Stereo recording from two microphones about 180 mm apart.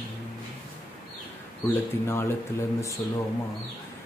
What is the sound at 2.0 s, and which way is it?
Mantra, 15° left (ahead or behind).